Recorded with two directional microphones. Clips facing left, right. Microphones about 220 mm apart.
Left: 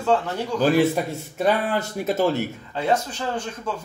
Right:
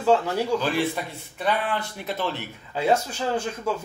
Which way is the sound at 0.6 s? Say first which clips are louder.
Left 7 dB; 40° left (ahead or behind).